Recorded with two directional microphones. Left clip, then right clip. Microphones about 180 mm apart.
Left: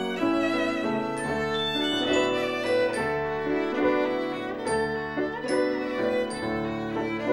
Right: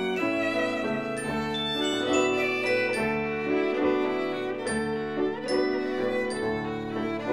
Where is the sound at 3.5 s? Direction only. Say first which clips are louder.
Even; 15° left (ahead or behind).